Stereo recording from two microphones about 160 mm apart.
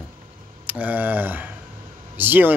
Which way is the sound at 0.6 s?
10° right (ahead or behind).